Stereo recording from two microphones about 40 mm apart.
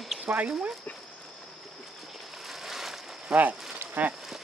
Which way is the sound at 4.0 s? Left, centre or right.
Right.